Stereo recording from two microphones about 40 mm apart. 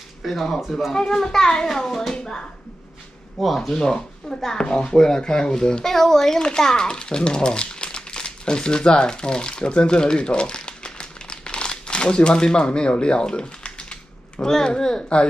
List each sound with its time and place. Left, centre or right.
0.2 s speech: centre
0.7 s a child's voice: centre
3.5 s a child's voice: centre
5.9 s a child's voice: centre